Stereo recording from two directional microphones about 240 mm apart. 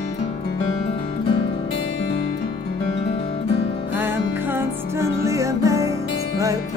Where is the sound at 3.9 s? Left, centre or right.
Centre.